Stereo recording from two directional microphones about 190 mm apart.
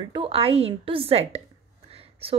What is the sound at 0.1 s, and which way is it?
A woman's voice, 30° right (ahead or behind).